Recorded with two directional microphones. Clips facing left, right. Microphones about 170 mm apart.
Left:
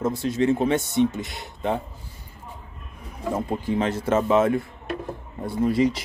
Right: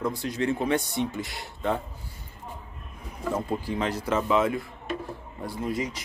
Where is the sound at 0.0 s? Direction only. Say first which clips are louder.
Left 5 dB; 25° left (ahead or behind).